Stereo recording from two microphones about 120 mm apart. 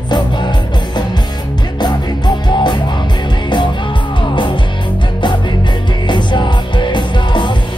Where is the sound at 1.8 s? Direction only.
35° left (ahead or behind).